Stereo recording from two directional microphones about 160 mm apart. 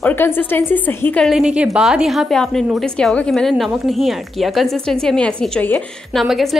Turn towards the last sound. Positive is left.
turn(degrees=0)  # may be behind; listen again after turning